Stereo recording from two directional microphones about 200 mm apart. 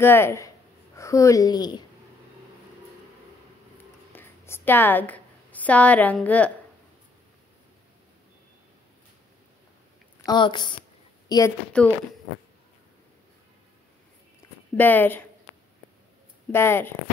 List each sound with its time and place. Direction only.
0.0 s speech: 10° left (ahead or behind)
4.1 s a sound: 10° left (ahead or behind)
10.2 s a woman's voice: 20° left (ahead or behind)
11.8 s speech: 5° left (ahead or behind)
14.8 s speech: 10° left (ahead or behind)
16.5 s speech: 10° left (ahead or behind)